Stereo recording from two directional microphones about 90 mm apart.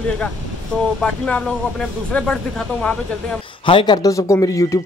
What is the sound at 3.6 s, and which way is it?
Speech, 65° left (ahead or behind).